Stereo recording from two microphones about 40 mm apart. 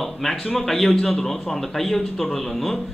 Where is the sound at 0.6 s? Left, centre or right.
Centre.